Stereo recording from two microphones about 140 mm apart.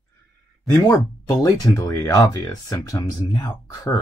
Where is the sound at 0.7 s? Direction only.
20° left (ahead or behind).